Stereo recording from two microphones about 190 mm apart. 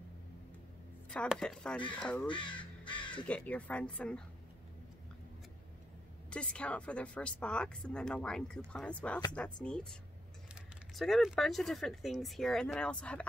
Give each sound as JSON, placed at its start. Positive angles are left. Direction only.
{"t": 1.1, "sound": "speech", "side_deg": 5}
{"t": 2.2, "sound": "speech", "side_deg": 25}
{"t": 3.3, "sound": "speech", "side_deg": 5}
{"t": 6.3, "sound": "speech", "side_deg": 5}